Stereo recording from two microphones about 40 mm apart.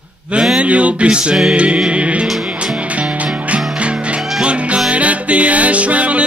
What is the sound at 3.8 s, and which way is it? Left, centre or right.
Music, right.